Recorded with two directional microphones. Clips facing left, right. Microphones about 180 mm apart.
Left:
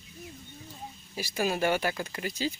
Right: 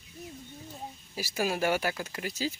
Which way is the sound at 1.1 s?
5° right (ahead or behind).